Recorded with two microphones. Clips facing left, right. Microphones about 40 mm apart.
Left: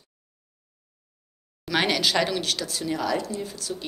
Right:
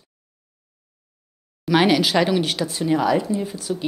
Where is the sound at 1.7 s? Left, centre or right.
Centre.